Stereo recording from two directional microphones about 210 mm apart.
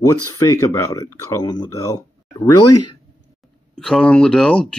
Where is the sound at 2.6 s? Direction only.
90° left.